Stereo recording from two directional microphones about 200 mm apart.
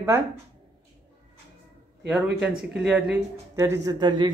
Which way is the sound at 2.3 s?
5° right (ahead or behind).